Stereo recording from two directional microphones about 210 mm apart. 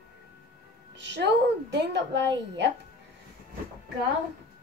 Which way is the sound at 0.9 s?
55° right (ahead or behind).